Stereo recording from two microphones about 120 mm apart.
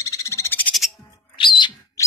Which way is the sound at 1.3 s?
40° left (ahead or behind).